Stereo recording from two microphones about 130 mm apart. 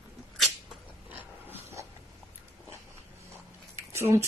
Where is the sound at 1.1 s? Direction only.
15° right (ahead or behind).